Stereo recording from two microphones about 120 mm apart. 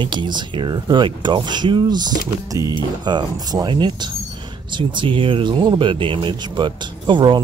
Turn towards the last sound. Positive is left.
turn(degrees=-40)  # may be behind; listen again after turning